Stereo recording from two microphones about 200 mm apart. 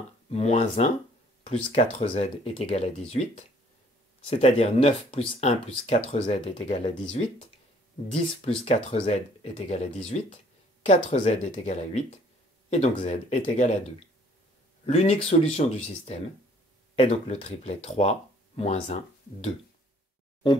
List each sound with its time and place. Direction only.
0.3 s speech: 30° left (ahead or behind)